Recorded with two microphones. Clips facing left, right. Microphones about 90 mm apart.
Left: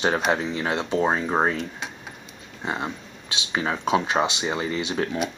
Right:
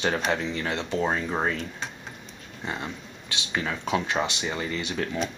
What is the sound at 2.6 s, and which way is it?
Speech, 25° left (ahead or behind).